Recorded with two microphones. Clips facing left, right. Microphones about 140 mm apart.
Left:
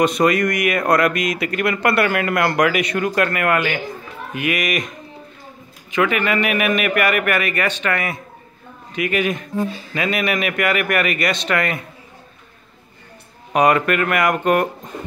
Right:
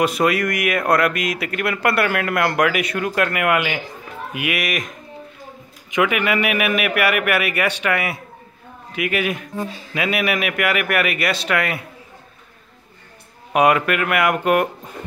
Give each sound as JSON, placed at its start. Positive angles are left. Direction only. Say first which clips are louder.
{"t": 0.0, "sound": "speech", "louder": "left 2 dB", "side_deg": -5}
{"t": 5.9, "sound": "a man's voice", "louder": "even", "side_deg": -10}
{"t": 13.5, "sound": "a man's voice", "louder": "even", "side_deg": -5}